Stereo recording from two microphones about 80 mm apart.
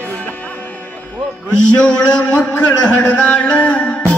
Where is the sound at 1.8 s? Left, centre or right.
Centre.